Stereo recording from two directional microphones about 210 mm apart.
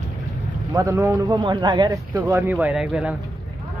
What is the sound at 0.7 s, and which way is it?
Speech, 20° right (ahead or behind).